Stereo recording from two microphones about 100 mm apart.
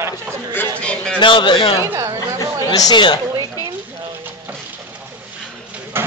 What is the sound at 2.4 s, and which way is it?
Chatter, 40° left (ahead or behind).